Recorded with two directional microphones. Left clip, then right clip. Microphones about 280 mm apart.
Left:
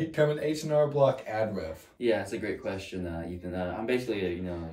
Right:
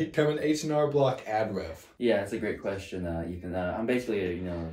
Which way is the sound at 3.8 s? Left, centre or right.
Centre.